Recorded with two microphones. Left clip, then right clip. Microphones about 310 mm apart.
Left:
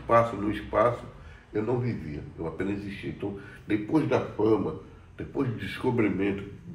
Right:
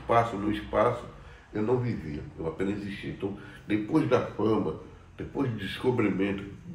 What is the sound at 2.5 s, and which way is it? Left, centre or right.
A man's voice, centre.